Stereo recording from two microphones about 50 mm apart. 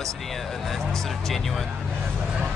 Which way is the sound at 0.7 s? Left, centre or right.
Centre.